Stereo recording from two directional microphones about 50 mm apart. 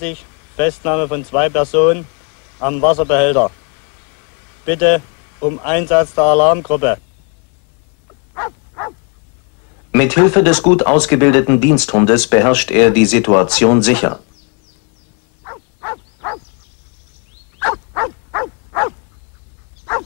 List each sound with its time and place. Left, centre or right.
0.0 s speech: left
4.6 s speech: left
8.4 s dog: left
9.9 s speech: centre
10.2 s speech: left
13.7 s speech: left
17.6 s dog: left
18.7 s dog: centre